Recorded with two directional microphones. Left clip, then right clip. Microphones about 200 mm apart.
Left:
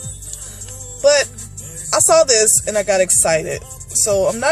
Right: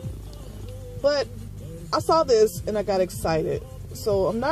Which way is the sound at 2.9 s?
20° left (ahead or behind).